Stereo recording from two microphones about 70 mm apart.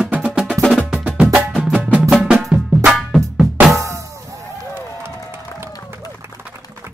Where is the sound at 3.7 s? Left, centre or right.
Right.